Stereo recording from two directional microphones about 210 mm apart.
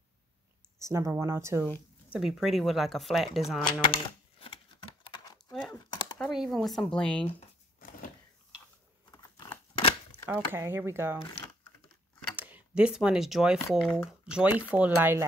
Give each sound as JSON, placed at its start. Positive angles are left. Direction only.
{"t": 0.7, "sound": "speech", "side_deg": -15}
{"t": 2.1, "sound": "speech", "side_deg": 0}
{"t": 3.8, "sound": "a sound", "side_deg": 25}
{"t": 6.1, "sound": "speech", "side_deg": 0}
{"t": 9.1, "sound": "crumpling", "side_deg": 20}
{"t": 10.2, "sound": "speech", "side_deg": -10}
{"t": 12.4, "sound": "speech", "side_deg": -10}